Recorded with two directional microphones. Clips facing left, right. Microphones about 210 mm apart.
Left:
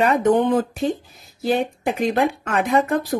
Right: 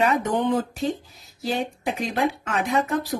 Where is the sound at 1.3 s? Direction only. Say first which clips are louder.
Left 6 dB; 55° left (ahead or behind).